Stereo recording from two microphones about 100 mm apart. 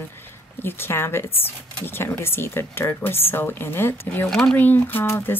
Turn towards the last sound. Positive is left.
turn(degrees=20)  # may be behind; listen again after turning